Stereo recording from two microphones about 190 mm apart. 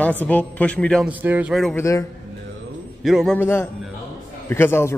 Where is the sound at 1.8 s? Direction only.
15° left (ahead or behind).